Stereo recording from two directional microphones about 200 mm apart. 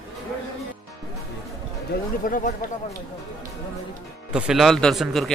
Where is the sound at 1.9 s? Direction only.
45° left (ahead or behind).